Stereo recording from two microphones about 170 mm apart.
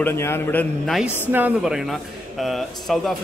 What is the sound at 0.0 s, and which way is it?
Speech, 15° left (ahead or behind).